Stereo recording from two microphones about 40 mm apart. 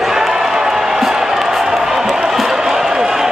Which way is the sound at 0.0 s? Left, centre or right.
Centre.